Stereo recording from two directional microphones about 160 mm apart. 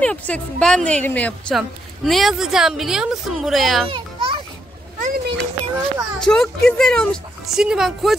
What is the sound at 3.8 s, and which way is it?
Children playing, 30° right (ahead or behind).